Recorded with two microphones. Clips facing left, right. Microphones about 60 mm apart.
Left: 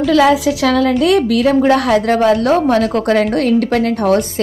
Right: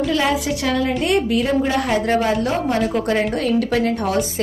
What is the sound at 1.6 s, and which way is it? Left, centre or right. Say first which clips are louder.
A woman's voice: left 7 dB; left.